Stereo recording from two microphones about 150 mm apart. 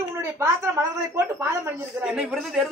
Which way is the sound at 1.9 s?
5° right (ahead or behind).